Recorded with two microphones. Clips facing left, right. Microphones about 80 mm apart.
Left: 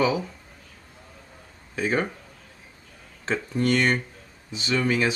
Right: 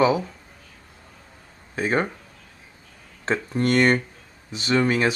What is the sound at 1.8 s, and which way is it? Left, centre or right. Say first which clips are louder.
Speech: right 2 dB; right.